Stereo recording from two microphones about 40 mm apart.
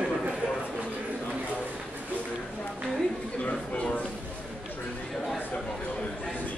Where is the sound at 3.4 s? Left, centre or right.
Left.